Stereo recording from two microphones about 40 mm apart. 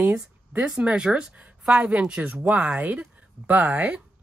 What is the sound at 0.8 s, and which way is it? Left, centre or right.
Speech, right.